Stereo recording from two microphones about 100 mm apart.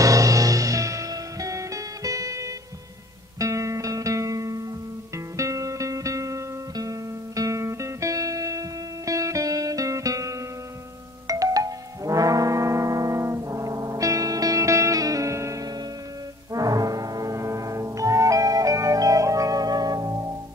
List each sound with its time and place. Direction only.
0.0 s music: 35° right (ahead or behind)
11.2 s brass instrument: 35° right (ahead or behind)
16.5 s music: 35° right (ahead or behind)